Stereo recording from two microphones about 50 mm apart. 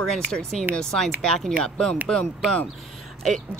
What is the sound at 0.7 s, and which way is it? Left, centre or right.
Speech, centre.